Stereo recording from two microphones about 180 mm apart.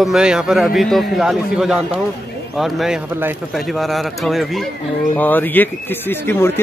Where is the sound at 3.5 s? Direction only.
Centre (ahead or behind).